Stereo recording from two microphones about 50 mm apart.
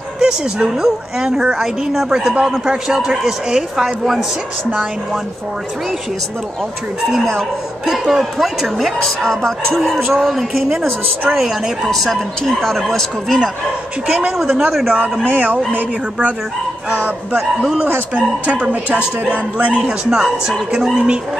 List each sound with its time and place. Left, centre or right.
0.2 s a woman's voice: centre
8.1 s a woman's voice: centre
14.3 s a woman's voice: centre
15.2 s speech: right
17.4 s a woman's voice: centre
18.1 s speech: right
20.1 s a woman's voice: centre